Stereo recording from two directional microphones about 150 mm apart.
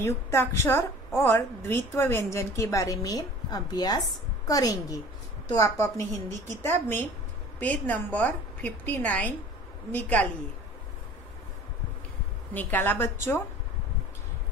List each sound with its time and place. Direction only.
0.0 s a woman's voice: 15° left (ahead or behind)
12.5 s a woman's voice: 15° left (ahead or behind)